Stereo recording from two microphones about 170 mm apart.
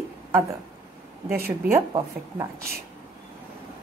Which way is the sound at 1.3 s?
60° right (ahead or behind).